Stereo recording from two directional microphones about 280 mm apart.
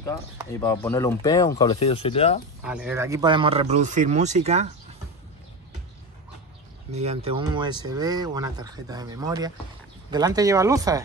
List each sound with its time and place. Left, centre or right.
0.6 s speech: centre
2.6 s speech: centre; by 4.6 s right
6.9 s speech: right